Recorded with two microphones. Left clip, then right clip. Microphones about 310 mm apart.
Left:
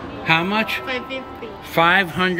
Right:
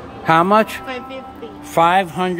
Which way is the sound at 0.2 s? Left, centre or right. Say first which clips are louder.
Right 6 dB; centre.